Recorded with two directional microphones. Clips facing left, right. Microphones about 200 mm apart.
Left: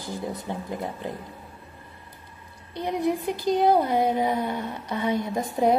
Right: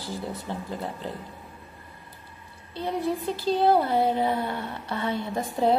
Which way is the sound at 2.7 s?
15° left (ahead or behind).